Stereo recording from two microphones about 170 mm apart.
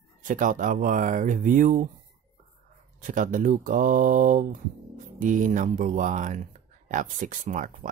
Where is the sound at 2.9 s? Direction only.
50° right (ahead or behind).